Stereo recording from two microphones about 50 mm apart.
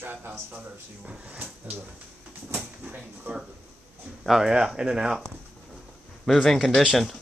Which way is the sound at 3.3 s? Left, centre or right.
Right.